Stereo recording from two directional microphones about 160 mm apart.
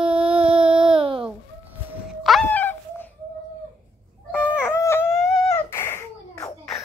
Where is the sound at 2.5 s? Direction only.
15° left (ahead or behind).